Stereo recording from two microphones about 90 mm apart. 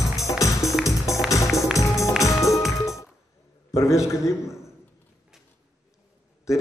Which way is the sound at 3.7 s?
35° left (ahead or behind).